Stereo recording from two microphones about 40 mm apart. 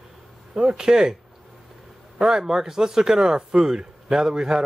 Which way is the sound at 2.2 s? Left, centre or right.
Centre.